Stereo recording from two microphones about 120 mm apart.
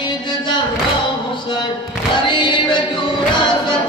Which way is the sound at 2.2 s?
40° left (ahead or behind).